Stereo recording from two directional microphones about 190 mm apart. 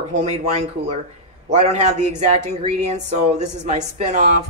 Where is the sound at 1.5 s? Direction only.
35° right (ahead or behind).